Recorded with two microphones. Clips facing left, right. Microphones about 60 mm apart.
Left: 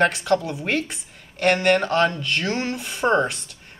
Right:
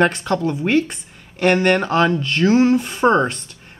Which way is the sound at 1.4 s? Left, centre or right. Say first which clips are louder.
Right 3 dB; centre.